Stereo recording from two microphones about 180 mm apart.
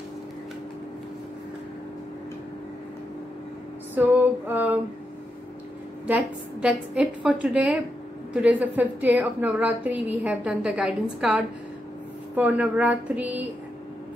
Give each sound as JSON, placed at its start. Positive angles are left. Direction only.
{"t": 3.9, "sound": "female singing", "side_deg": -10}
{"t": 6.0, "sound": "a woman's voice", "side_deg": -5}